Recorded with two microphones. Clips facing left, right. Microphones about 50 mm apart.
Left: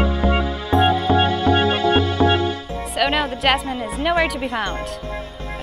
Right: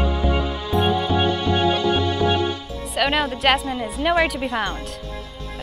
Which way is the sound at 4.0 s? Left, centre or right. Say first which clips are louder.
Even; centre.